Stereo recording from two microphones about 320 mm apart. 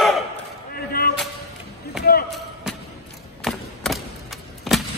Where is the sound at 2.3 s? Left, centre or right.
Centre.